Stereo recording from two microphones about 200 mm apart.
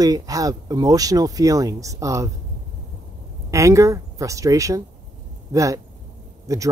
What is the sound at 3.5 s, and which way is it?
Speech, 15° right (ahead or behind).